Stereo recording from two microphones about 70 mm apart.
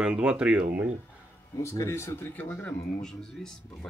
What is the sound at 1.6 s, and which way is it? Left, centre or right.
Speech, left.